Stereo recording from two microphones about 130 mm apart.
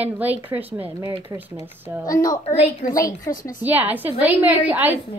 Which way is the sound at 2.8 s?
90° left.